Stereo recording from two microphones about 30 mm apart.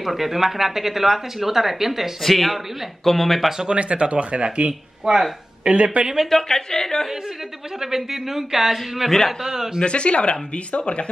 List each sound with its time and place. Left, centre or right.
0.0 s speech: centre
2.2 s speech: centre
3.6 s speech: right
6.3 s speech: centre
7.8 s speech: centre
9.8 s speech: left